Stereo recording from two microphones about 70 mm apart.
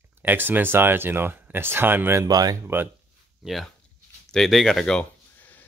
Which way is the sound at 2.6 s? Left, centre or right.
Right.